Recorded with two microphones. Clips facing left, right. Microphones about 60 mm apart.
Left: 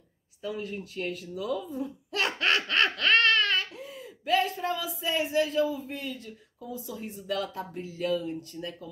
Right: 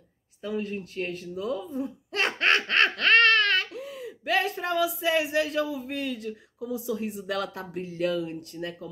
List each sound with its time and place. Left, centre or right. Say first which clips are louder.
0.4 s speech: right 3 dB; right